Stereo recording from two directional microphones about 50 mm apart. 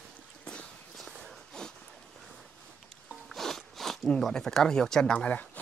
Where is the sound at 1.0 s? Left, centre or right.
Centre.